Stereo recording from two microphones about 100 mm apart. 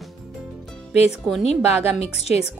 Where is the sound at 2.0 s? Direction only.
90° left.